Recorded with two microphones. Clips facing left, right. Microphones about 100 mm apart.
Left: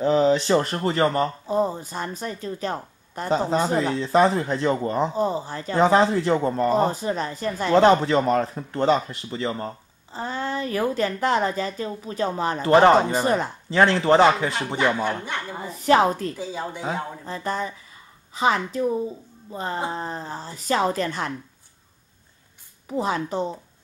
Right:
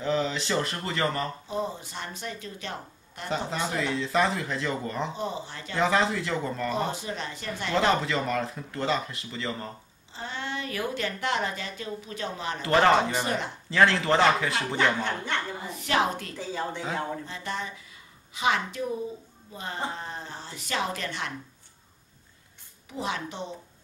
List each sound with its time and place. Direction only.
0.0 s speech: 35° left (ahead or behind)
13.7 s speech: 25° left (ahead or behind)
15.0 s speech: 10° left (ahead or behind)
15.8 s speech: 35° left (ahead or behind)
16.3 s speech: 10° left (ahead or behind)
17.3 s speech: 40° left (ahead or behind)
22.8 s speech: 40° left (ahead or behind)